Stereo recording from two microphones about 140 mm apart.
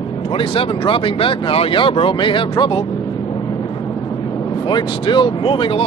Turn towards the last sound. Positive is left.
turn(degrees=40)  # may be behind; listen again after turning